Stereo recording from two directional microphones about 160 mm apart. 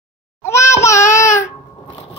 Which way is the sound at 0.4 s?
20° left (ahead or behind).